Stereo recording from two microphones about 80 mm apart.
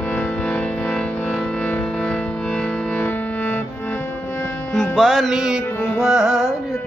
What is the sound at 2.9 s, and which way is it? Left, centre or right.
Music, centre.